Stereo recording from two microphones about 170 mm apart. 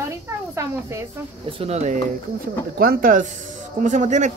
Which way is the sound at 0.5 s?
15° right (ahead or behind).